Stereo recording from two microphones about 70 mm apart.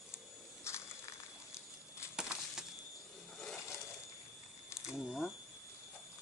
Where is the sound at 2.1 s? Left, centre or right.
Centre.